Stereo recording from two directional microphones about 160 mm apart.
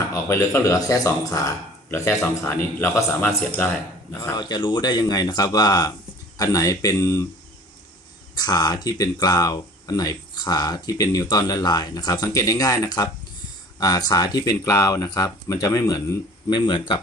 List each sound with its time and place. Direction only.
0.1 s speech: 15° left (ahead or behind)
4.4 s speech: 25° left (ahead or behind)
8.4 s speech: 25° left (ahead or behind)